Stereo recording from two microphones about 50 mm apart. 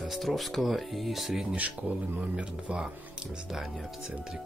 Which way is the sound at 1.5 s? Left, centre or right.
Right.